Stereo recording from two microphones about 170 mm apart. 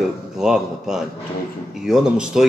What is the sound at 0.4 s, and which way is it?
A man's voice, 5° right (ahead or behind).